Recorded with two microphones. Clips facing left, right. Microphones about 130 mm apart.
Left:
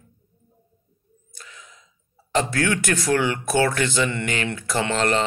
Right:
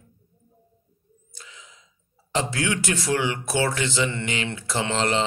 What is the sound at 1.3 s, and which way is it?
Gasp, 20° right (ahead or behind).